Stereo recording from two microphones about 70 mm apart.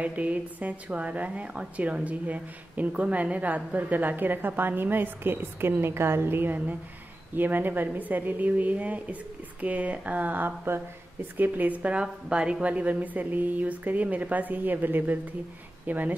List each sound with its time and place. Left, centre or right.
0.0 s a woman's voice: right